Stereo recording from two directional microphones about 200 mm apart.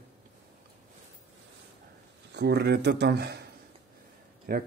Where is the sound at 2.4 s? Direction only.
55° right (ahead or behind).